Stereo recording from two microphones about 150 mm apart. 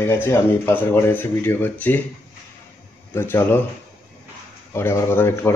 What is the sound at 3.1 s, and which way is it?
Speech, 15° left (ahead or behind).